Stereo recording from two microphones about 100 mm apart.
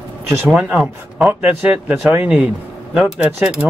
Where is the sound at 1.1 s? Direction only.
10° right (ahead or behind).